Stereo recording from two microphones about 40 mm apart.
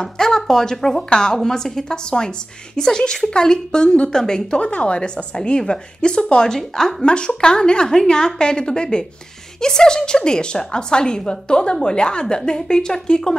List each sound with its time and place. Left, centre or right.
0.0 s a woman's voice: centre
4.6 s a woman's voice: left
6.5 s a woman's voice: centre